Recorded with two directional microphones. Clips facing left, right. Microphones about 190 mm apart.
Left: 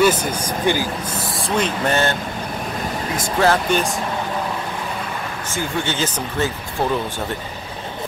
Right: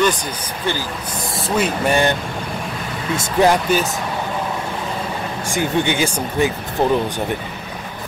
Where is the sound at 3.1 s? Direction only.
20° right (ahead or behind).